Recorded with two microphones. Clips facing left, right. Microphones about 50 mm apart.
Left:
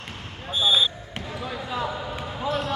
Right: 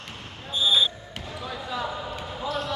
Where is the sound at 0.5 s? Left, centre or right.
Left.